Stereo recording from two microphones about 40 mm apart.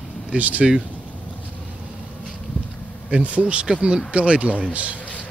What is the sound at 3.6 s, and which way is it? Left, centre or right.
Speech, centre.